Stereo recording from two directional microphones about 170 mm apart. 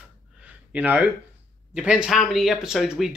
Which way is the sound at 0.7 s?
10° right (ahead or behind).